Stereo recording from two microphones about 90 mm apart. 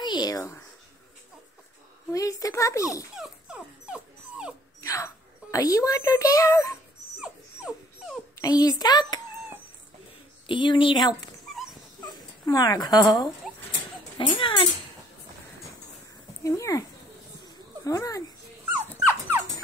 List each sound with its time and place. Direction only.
0.0 s speech: 50° left (ahead or behind)
2.1 s speech: 40° left (ahead or behind)
3.2 s dog: 10° right (ahead or behind)
4.8 s speech: 35° left (ahead or behind)
7.2 s dog: 10° right (ahead or behind)
8.4 s a child's voice: 45° left (ahead or behind)
10.4 s speech: 65° left (ahead or behind)
12.1 s speech: 45° left (ahead or behind)
14.1 s speech: 70° left (ahead or behind)
16.4 s speech: 35° left (ahead or behind)
17.8 s speech: 35° left (ahead or behind)